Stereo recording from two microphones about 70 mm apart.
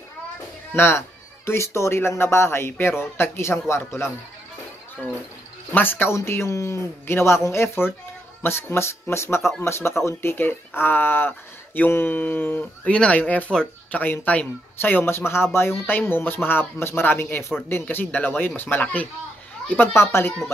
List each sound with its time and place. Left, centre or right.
0.7 s speech: left
5.7 s speech: left
12.9 s speech: centre
14.8 s speech: left
19.9 s speech: left